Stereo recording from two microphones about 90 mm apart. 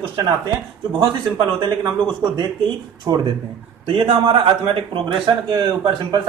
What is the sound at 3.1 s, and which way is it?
Speech, 45° right (ahead or behind).